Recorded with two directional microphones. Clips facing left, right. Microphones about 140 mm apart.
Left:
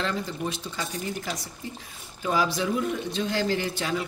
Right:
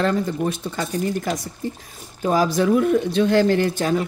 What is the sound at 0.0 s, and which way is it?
Speech, 50° right (ahead or behind).